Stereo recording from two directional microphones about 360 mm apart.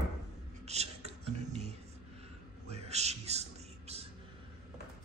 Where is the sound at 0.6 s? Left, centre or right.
Centre.